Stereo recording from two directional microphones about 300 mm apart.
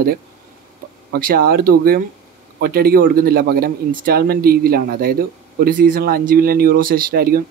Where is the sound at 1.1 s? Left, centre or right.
Right.